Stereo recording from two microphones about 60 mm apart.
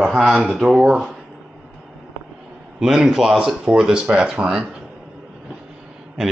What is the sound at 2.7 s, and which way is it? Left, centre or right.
Speech, centre.